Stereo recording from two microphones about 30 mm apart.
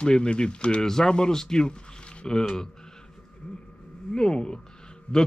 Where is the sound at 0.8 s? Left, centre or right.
Centre.